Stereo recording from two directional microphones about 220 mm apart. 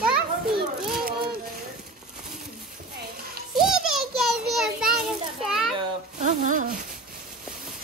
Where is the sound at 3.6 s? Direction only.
Centre (ahead or behind).